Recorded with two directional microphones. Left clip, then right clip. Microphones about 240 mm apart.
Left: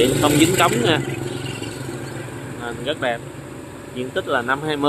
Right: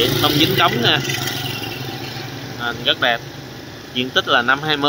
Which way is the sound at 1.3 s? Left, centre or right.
Right.